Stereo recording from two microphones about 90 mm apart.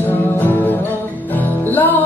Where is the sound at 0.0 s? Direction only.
20° left (ahead or behind).